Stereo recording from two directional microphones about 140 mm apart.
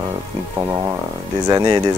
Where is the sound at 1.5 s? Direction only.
25° right (ahead or behind).